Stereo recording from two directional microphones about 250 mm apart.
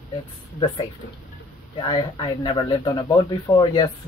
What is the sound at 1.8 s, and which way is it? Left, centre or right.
Speech, centre.